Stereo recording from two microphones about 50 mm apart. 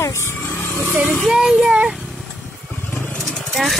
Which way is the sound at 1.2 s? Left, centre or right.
Centre.